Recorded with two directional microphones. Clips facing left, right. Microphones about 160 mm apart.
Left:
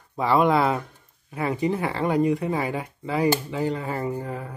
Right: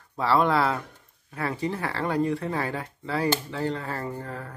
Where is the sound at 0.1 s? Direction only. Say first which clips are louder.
Left 3 dB; 15° left (ahead or behind).